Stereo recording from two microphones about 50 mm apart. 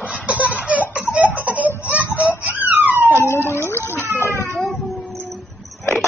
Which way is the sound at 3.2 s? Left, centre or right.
Left.